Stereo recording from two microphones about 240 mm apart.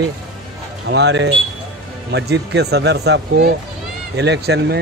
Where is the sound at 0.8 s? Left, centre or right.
Right.